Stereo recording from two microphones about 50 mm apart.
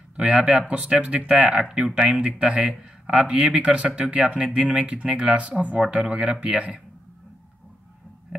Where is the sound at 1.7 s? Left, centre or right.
Centre.